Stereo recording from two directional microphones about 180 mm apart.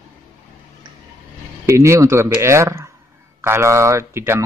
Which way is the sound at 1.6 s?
15° right (ahead or behind).